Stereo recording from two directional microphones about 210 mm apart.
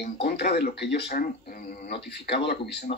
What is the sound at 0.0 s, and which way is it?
Speech, 50° left (ahead or behind).